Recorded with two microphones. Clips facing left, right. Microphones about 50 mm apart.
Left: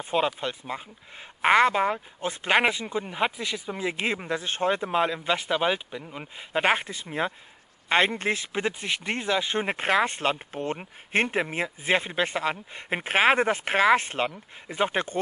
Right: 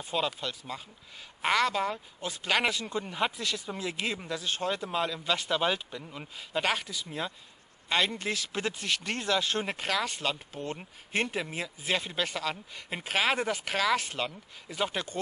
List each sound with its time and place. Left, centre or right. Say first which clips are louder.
0.0 s speech: left 6 dB; left